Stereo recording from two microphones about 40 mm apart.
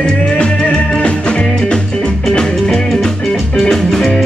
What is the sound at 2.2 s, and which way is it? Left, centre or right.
Music, centre.